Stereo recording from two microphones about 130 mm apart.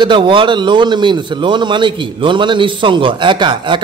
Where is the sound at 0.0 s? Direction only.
40° right (ahead or behind).